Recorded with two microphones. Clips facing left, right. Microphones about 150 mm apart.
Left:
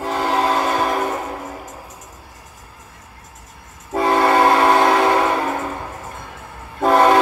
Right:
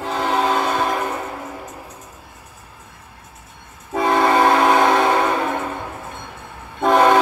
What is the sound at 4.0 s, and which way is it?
Train, centre (ahead or behind).